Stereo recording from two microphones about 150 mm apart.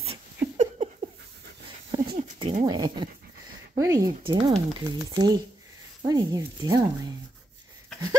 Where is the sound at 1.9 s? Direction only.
25° right (ahead or behind).